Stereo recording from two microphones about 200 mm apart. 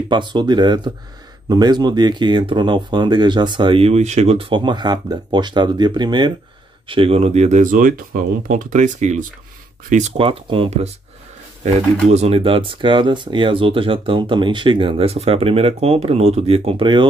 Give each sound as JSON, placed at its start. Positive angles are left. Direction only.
{"t": 0.1, "sound": "speech", "side_deg": -25}